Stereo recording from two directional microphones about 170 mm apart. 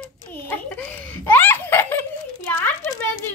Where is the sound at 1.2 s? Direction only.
10° left (ahead or behind).